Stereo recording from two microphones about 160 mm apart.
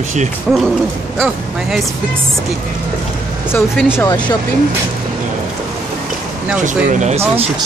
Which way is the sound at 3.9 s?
25° left (ahead or behind).